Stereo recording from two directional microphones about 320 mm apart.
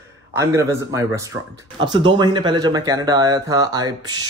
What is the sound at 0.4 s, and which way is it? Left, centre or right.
Speech, centre.